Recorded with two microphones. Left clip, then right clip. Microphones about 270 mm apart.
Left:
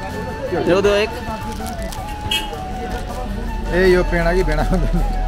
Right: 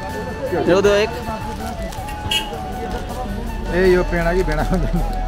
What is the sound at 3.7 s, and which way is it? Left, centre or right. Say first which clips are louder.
Speech: left 1 dB; centre.